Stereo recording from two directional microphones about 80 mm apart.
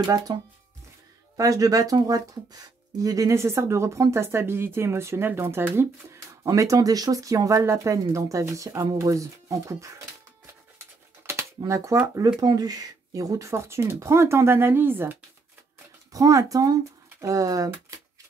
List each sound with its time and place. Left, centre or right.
0.0 s speech: right
1.3 s speech: right
6.4 s speech: right
11.3 s a sound: right
11.6 s speech: right
12.4 s speech: right
16.1 s speech: right